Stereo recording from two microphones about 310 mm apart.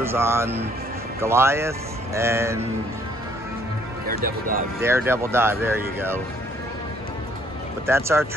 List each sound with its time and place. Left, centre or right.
0.0 s speech: centre
4.1 s speech: right
4.8 s speech: centre
7.8 s speech: centre